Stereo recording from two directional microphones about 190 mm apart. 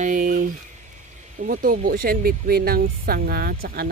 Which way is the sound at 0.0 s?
45° right (ahead or behind).